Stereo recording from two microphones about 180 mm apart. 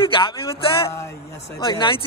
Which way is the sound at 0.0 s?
30° left (ahead or behind).